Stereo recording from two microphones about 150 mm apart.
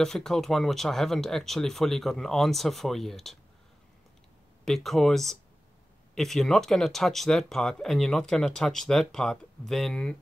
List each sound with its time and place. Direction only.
0.0 s speech: centre (ahead or behind)
4.6 s speech: centre (ahead or behind)